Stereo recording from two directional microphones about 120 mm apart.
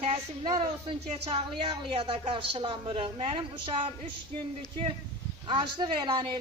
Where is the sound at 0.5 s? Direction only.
45° right (ahead or behind).